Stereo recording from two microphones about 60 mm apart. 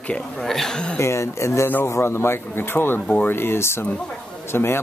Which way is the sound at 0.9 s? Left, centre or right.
Left.